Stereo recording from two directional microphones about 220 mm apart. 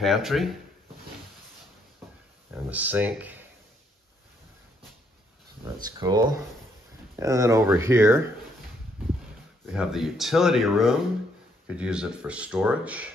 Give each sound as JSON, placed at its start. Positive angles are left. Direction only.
{"t": 0.0, "sound": "speech", "side_deg": 0}
{"t": 2.5, "sound": "speech", "side_deg": -5}
{"t": 5.9, "sound": "speech", "side_deg": -20}
{"t": 9.7, "sound": "speech", "side_deg": 0}